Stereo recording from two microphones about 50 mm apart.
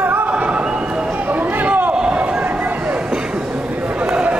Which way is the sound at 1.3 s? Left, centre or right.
Right.